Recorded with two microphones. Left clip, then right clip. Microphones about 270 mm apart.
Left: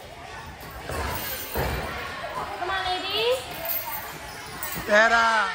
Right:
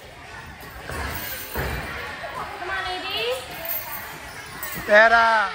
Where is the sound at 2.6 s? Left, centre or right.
Left.